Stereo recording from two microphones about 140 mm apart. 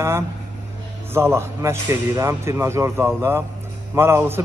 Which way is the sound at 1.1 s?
20° right (ahead or behind).